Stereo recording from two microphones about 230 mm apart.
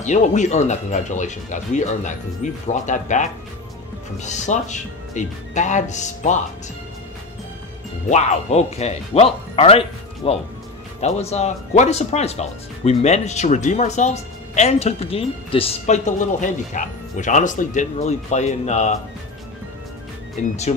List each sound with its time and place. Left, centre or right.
0.0 s speech: left
8.1 s speech: left
20.3 s speech: left